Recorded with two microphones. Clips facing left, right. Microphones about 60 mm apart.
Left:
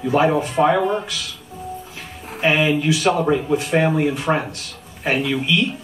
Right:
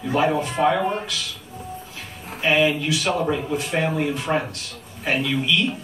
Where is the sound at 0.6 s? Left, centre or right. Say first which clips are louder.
Left 3 dB; centre.